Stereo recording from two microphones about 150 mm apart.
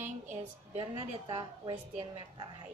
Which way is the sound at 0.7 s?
35° right (ahead or behind).